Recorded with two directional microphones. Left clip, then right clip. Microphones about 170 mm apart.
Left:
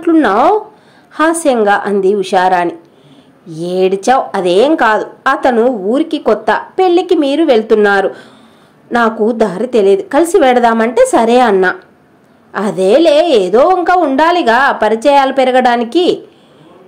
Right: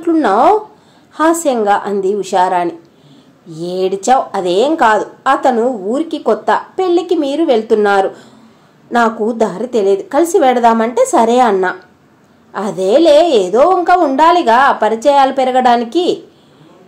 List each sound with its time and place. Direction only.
0.0 s a woman's voice: 25° left (ahead or behind)